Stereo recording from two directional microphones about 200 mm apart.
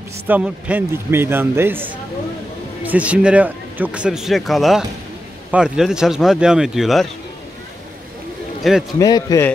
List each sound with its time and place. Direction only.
0.3 s a man's voice: 5° right (ahead or behind)
8.6 s a man's voice: centre (ahead or behind)
9.0 s a man's voice: 20° left (ahead or behind)